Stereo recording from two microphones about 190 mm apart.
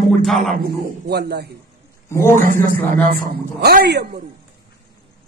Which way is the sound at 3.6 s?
55° right (ahead or behind).